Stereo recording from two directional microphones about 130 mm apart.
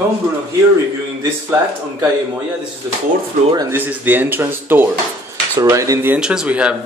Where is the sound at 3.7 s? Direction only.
15° right (ahead or behind).